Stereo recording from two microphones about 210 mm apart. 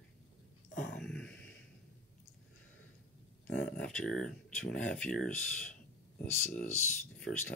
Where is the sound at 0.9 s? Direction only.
5° left (ahead or behind).